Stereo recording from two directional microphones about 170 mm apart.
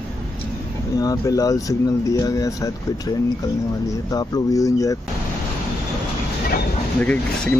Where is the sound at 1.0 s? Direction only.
20° left (ahead or behind).